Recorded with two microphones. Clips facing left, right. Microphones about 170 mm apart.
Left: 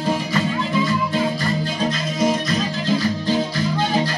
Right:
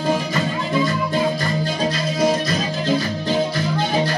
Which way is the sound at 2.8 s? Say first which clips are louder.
Even; 60° right (ahead or behind).